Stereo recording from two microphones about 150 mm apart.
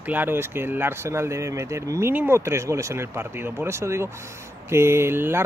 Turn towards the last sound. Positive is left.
turn(degrees=-15)  # may be behind; listen again after turning